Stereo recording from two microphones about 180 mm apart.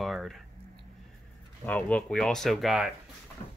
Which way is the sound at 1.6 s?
10° left (ahead or behind).